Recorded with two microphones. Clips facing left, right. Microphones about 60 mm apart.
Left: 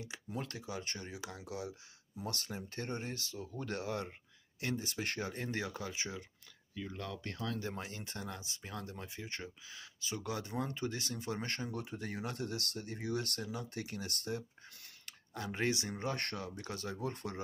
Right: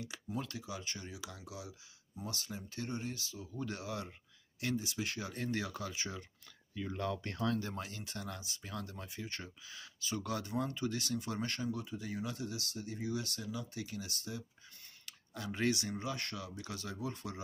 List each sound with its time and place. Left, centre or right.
0.4 s speech: left
5.3 s speech: left
6.7 s speech: centre
7.5 s speech: left
11.7 s speech: left
15.0 s speech: left
16.0 s speech: left
17.0 s speech: left